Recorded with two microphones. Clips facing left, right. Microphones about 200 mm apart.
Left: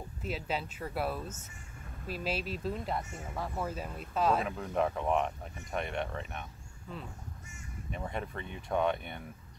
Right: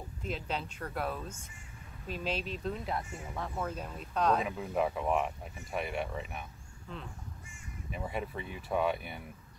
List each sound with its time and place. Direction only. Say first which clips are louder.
0.2 s speech: left 1 dB; 5° left (ahead or behind)
7.9 s speech: right 1 dB; 5° right (ahead or behind)